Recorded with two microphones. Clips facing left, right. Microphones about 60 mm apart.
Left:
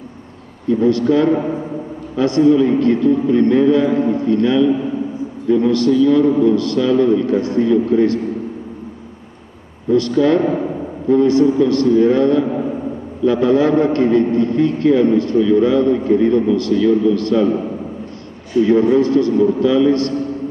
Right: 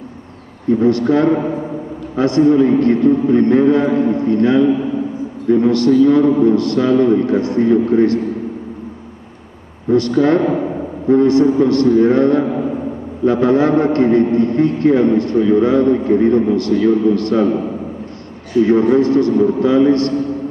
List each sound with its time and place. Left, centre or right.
0.7 s a man's voice: right
9.8 s a man's voice: right
18.6 s a man's voice: right